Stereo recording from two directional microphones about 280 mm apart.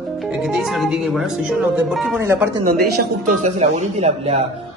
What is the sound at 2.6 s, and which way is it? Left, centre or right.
Speech, right.